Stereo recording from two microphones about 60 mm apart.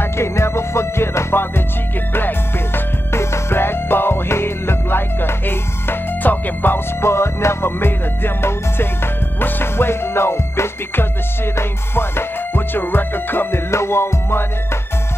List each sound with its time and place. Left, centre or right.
0.0 s music: left
13.7 s music: left